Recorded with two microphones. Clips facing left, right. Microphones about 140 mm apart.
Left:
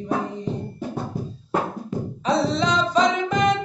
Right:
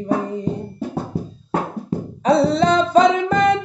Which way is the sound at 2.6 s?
55° right (ahead or behind).